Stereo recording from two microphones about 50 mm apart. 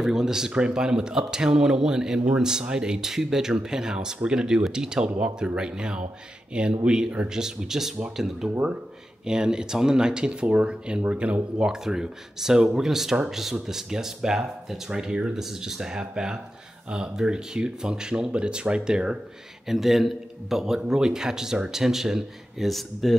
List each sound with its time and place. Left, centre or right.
0.0 s speech: centre
0.5 s speech: right
19.7 s speech: centre